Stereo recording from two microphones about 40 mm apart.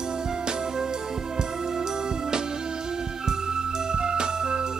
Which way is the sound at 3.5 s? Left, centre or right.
Centre.